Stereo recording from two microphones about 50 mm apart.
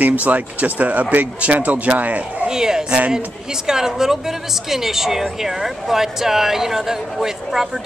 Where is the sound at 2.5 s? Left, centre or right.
Centre.